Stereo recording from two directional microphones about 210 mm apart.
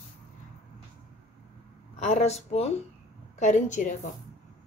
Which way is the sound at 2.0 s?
30° left (ahead or behind).